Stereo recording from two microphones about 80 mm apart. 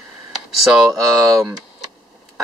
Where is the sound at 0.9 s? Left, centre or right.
Right.